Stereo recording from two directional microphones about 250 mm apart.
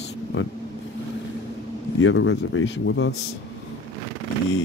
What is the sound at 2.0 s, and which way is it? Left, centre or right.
Speech, left.